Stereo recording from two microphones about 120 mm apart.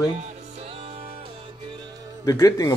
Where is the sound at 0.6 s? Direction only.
55° right (ahead or behind).